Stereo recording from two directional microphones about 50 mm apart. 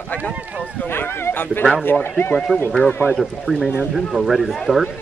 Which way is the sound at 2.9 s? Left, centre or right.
Left.